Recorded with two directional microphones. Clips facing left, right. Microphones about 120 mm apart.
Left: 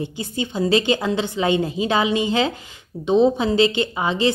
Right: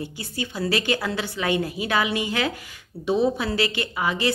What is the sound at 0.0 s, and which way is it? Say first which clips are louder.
A woman's voice: left 5 dB; 20° left (ahead or behind).